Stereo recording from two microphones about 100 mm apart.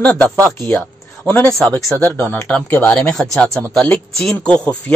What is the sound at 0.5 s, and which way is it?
Speech, 25° left (ahead or behind).